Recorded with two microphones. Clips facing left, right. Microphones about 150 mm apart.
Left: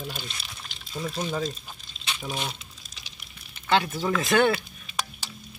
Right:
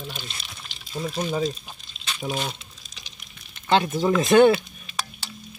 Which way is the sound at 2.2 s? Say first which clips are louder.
Right 5 dB; 5° right (ahead or behind).